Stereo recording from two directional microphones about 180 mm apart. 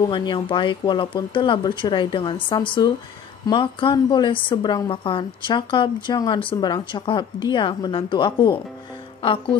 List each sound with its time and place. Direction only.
0.1 s a woman's voice: 25° left (ahead or behind)